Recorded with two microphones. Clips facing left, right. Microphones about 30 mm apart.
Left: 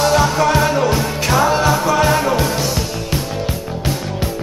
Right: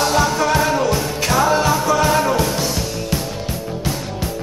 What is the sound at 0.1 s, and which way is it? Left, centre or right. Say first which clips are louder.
Music: left 2 dB; centre.